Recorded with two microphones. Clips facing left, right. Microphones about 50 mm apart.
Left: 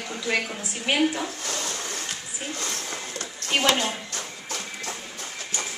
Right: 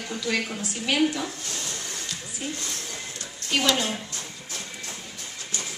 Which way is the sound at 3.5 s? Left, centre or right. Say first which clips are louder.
Left 1 dB; left.